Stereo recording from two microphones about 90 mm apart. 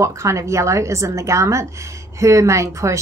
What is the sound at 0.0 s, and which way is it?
A woman's voice, 35° right (ahead or behind).